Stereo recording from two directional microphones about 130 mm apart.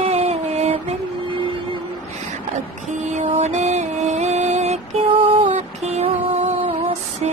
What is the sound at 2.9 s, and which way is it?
Music, 65° right (ahead or behind).